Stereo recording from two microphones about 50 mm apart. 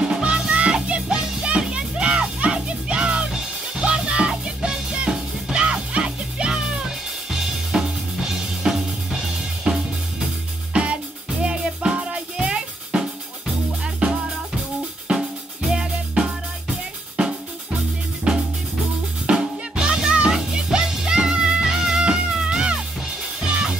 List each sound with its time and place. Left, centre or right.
0.1 s music: right
7.2 s drum kit: centre
9.7 s music: centre
15.1 s drum kit: right
18.3 s drum kit: centre
19.2 s music: centre